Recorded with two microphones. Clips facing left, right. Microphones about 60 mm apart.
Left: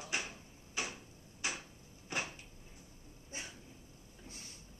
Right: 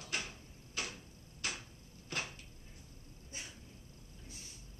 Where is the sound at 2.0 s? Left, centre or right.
Centre.